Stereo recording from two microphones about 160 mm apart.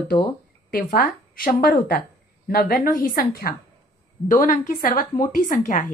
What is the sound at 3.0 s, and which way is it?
A woman's voice, 65° left (ahead or behind).